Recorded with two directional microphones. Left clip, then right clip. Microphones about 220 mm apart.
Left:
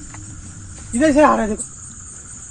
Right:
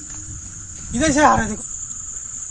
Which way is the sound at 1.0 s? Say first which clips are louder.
Left 2 dB; 55° right (ahead or behind).